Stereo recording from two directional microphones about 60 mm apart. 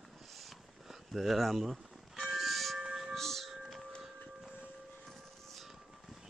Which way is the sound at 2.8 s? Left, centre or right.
Centre.